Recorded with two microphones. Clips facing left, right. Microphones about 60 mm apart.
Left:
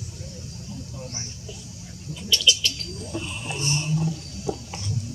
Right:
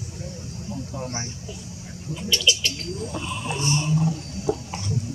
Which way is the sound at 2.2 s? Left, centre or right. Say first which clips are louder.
Even; centre.